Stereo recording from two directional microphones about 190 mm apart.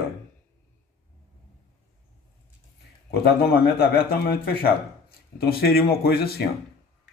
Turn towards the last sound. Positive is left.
turn(degrees=55)  # may be behind; listen again after turning